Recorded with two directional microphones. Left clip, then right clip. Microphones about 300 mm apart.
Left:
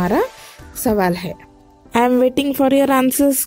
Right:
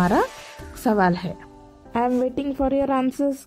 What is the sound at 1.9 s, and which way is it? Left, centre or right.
A woman's voice, left.